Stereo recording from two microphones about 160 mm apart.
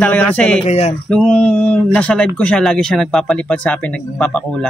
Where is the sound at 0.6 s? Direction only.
40° left (ahead or behind).